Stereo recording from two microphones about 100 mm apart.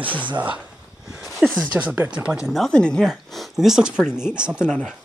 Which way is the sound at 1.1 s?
Centre (ahead or behind).